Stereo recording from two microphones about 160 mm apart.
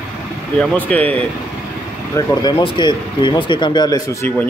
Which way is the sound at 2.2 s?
20° left (ahead or behind).